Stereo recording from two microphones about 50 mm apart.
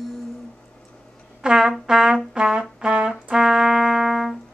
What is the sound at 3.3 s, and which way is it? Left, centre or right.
Music, centre.